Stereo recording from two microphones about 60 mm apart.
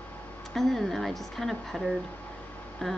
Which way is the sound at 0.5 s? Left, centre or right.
Centre.